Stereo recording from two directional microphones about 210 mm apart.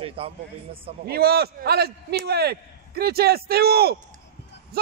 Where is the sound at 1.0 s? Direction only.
50° right (ahead or behind).